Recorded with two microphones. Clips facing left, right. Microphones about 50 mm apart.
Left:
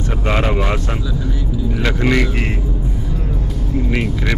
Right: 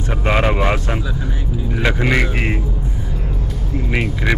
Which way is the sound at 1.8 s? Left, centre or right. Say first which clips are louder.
Even; centre.